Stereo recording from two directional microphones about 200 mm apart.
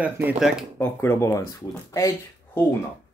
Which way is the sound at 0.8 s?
10° left (ahead or behind).